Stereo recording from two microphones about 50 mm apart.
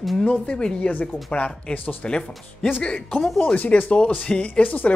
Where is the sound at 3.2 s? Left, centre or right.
Centre.